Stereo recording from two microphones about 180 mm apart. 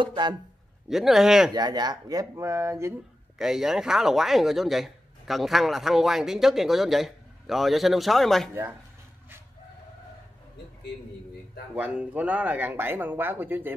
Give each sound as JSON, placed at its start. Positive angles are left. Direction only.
{"t": 0.0, "sound": "speech", "side_deg": -25}
{"t": 0.8, "sound": "speech", "side_deg": 0}
{"t": 1.5, "sound": "speech", "side_deg": -20}
{"t": 3.3, "sound": "speech", "side_deg": 0}
{"t": 11.7, "sound": "speech", "side_deg": -5}